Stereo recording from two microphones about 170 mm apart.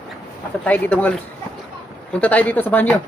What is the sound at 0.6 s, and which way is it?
Speech, 10° left (ahead or behind).